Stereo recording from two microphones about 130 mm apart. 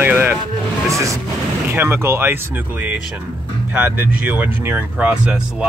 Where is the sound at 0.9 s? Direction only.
25° right (ahead or behind).